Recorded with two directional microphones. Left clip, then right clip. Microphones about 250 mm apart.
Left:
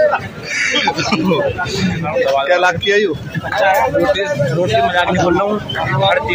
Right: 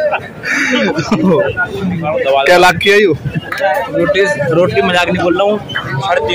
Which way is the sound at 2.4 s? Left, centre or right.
Right.